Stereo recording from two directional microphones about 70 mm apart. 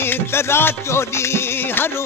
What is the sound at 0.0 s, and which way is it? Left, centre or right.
Music, left.